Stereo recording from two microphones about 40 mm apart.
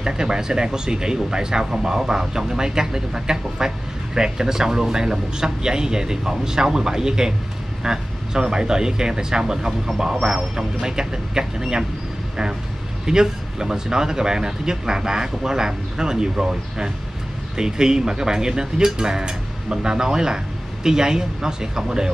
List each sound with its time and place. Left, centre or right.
0.0 s speech: centre
13.0 s speech: centre